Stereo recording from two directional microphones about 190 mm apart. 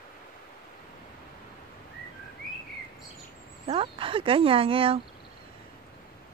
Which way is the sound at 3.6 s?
30° right (ahead or behind).